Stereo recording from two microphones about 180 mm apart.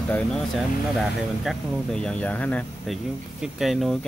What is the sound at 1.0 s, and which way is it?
Speech, centre (ahead or behind).